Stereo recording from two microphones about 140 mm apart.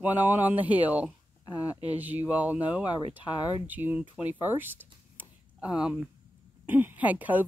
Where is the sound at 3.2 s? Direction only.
30° left (ahead or behind).